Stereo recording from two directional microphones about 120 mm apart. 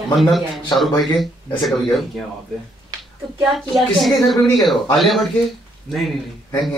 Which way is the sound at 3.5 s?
Centre (ahead or behind).